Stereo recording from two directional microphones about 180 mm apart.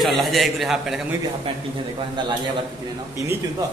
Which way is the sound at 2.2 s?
25° right (ahead or behind).